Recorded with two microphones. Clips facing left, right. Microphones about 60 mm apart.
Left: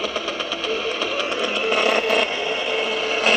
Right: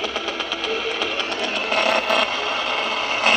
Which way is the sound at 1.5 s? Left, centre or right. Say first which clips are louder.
Even; right.